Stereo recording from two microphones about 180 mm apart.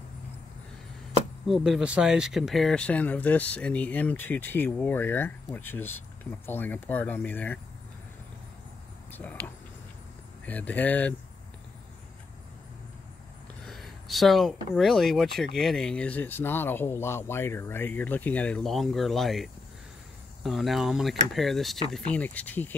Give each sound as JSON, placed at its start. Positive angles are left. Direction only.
{"t": 1.5, "sound": "speech", "side_deg": -5}
{"t": 9.1, "sound": "speech", "side_deg": 10}
{"t": 13.7, "sound": "speech", "side_deg": 0}